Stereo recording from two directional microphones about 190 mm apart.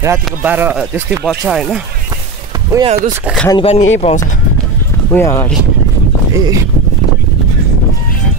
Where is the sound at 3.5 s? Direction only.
25° left (ahead or behind).